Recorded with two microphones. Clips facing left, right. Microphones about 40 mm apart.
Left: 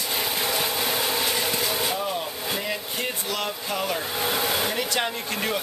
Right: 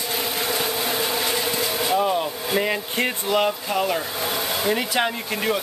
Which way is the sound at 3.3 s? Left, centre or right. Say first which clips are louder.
Right 7 dB; right.